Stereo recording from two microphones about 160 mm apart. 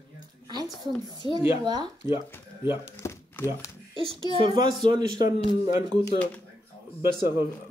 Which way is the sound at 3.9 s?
35° right (ahead or behind).